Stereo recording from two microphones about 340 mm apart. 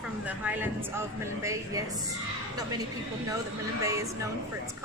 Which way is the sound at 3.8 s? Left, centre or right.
Centre.